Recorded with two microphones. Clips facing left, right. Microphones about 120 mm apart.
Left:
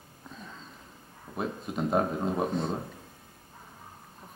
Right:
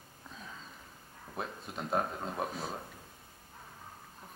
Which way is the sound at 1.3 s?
5° left (ahead or behind).